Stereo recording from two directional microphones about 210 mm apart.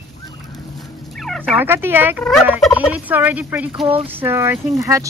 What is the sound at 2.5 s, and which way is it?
Speech, 5° right (ahead or behind).